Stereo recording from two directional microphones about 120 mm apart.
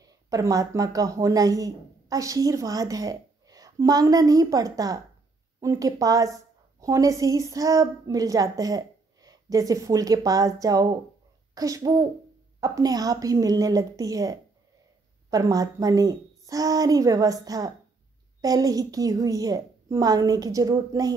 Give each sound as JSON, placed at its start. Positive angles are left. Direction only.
{"t": 0.0, "sound": "a woman's voice", "side_deg": -30}